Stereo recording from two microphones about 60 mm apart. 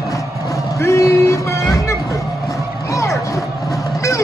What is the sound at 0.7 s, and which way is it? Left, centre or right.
Vehicle, left.